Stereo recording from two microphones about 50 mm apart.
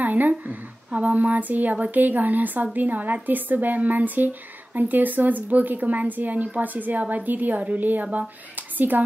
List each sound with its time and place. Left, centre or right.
0.0 s a woman's voice: right